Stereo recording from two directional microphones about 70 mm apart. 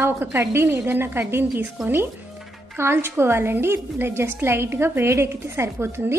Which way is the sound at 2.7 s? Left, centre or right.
Right.